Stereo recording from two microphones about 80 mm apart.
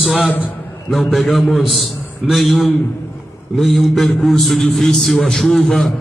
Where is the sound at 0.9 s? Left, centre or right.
Centre.